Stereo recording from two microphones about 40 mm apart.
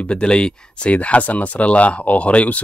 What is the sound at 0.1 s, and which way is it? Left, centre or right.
Speech, left.